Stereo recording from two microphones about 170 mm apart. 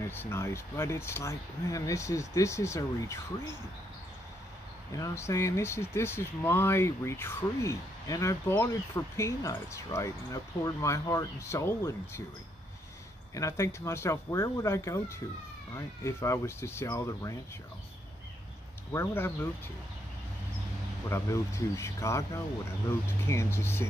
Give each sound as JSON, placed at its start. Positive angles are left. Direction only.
{"t": 0.0, "sound": "speech", "side_deg": 15}
{"t": 4.9, "sound": "speech", "side_deg": 20}
{"t": 13.3, "sound": "speech", "side_deg": 20}
{"t": 18.9, "sound": "speech", "side_deg": 15}
{"t": 21.1, "sound": "speech", "side_deg": 15}